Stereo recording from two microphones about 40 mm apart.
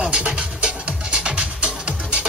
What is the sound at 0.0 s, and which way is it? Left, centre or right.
Music, right.